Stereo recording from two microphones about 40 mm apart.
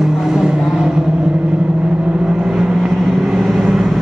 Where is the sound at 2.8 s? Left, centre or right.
Centre.